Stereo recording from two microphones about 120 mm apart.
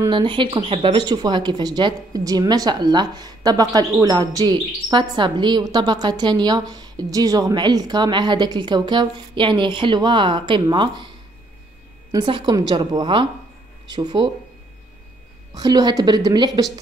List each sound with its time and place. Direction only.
0.1 s a woman's voice: 45° right (ahead or behind)
12.3 s a woman's voice: 40° right (ahead or behind)
15.5 s a woman's voice: 35° right (ahead or behind)